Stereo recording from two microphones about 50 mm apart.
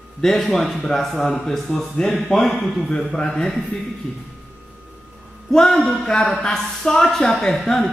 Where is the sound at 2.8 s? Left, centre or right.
Centre.